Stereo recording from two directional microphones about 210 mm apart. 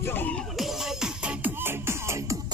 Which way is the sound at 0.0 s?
10° left (ahead or behind).